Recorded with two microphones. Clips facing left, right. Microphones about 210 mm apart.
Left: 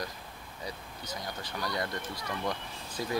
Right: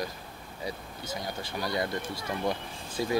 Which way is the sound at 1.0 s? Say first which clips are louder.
Right 4 dB; 25° right (ahead or behind).